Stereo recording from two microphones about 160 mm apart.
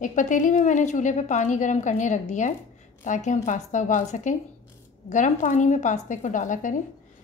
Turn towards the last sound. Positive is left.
turn(degrees=50)  # may be behind; listen again after turning